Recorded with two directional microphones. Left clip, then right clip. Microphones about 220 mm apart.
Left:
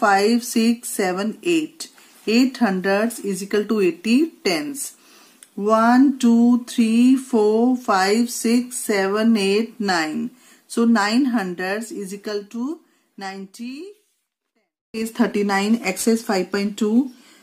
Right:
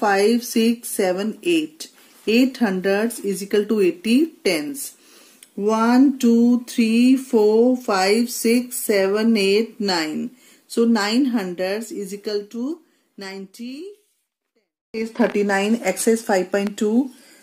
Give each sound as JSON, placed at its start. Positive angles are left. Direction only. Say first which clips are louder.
{"t": 0.0, "sound": "a woman's voice", "louder": "left 1 dB", "side_deg": 15}
{"t": 14.9, "sound": "speech", "louder": "right 2 dB", "side_deg": 25}